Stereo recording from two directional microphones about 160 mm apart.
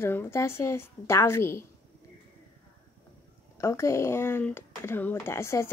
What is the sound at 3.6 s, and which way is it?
Speech, 20° left (ahead or behind).